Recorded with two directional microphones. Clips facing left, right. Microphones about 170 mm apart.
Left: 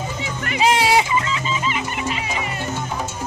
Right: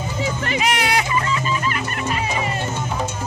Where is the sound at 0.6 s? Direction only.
30° left (ahead or behind).